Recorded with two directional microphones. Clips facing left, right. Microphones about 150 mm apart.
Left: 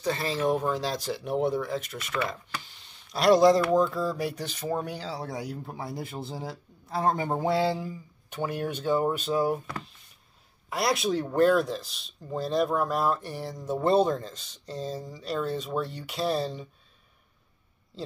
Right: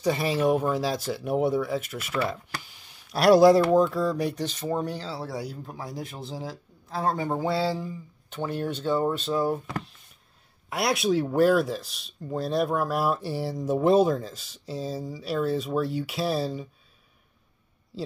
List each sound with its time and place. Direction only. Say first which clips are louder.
0.0 s speech: right 3 dB; 15° right (ahead or behind); by 5.3 s 15° left (ahead or behind)
7.0 s speech: even; 15° left (ahead or behind)
10.7 s speech: right 2 dB; centre (ahead or behind)
17.9 s a man's voice: right 3 dB; 5° right (ahead or behind)